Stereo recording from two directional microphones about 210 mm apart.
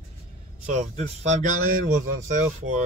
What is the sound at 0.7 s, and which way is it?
Speech, 35° right (ahead or behind).